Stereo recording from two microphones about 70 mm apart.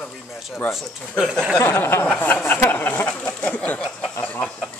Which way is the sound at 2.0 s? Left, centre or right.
Left.